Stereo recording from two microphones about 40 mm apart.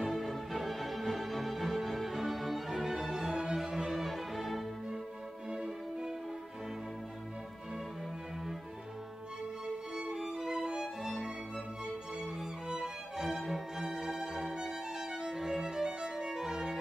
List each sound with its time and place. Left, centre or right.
0.0 s music: centre
2.7 s music: centre
5.5 s music: centre
10.3 s music: centre
13.8 s violin: centre